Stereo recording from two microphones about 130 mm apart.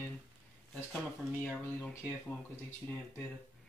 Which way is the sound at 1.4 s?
10° left (ahead or behind).